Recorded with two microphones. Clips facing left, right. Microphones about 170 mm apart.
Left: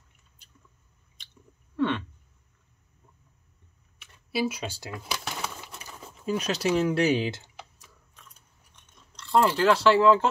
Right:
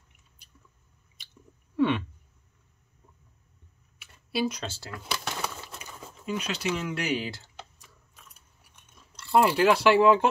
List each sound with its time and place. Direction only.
1.2 s chewing: 10° right (ahead or behind)
1.8 s a sound: 10° right (ahead or behind)
4.0 s speech: centre (ahead or behind)
5.0 s a sound: centre (ahead or behind)
6.2 s speech: 40° left (ahead or behind); by 7.5 s 20° left (ahead or behind)
7.8 s chewing: 5° right (ahead or behind)